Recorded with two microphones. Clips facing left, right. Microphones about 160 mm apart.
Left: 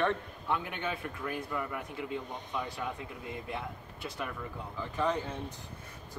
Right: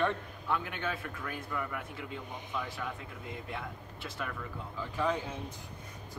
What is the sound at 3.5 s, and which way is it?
A man's voice, centre (ahead or behind).